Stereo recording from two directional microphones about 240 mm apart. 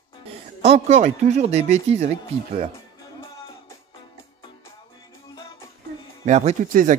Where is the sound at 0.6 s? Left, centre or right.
Right.